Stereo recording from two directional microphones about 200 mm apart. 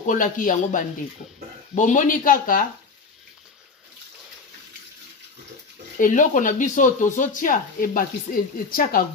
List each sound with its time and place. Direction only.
0.0 s speech: 40° left (ahead or behind)
5.9 s speech: 40° left (ahead or behind)